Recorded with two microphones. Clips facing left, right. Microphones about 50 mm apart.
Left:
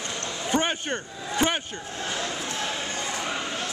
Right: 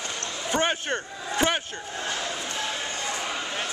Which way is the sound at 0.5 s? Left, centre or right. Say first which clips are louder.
Even; centre.